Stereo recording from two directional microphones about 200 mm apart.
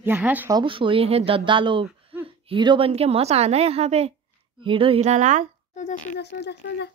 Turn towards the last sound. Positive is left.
turn(degrees=55)  # may be behind; listen again after turning